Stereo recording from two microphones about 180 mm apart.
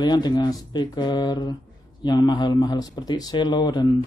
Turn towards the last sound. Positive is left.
turn(degrees=25)  # may be behind; listen again after turning